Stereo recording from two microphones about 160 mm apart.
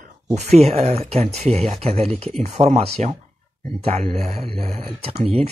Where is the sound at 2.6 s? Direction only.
45° right (ahead or behind).